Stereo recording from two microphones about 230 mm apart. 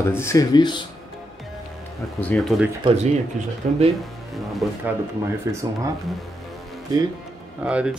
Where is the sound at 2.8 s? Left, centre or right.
Right.